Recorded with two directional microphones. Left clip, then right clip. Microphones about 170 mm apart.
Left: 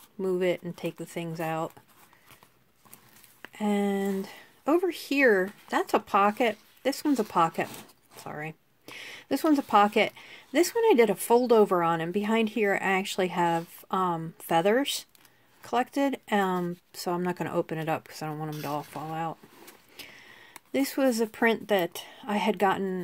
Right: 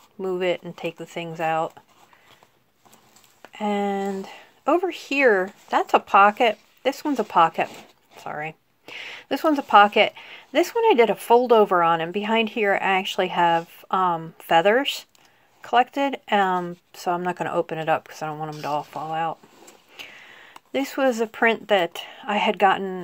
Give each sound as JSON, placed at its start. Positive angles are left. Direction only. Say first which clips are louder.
{"t": 0.2, "sound": "speech", "louder": "right 3 dB", "side_deg": 40}
{"t": 1.0, "sound": "speech", "louder": "right 4 dB", "side_deg": 45}
{"t": 1.4, "sound": "speech", "louder": "right 8 dB", "side_deg": 30}
{"t": 3.5, "sound": "speech", "louder": "right 4 dB", "side_deg": 35}
{"t": 6.8, "sound": "speech", "louder": "right 2 dB", "side_deg": 45}
{"t": 7.2, "sound": "speech", "louder": "right 10 dB", "side_deg": 30}
{"t": 7.7, "sound": "a sound", "louder": "right 3 dB", "side_deg": 25}
{"t": 9.7, "sound": "speech", "louder": "right 9 dB", "side_deg": 35}